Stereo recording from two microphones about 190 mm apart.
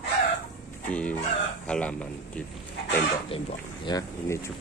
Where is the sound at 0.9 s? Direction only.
5° left (ahead or behind).